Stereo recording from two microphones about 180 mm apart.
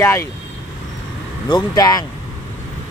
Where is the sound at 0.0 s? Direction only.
15° left (ahead or behind).